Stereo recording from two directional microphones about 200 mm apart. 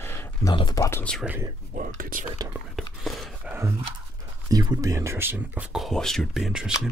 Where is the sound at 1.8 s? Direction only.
45° right (ahead or behind).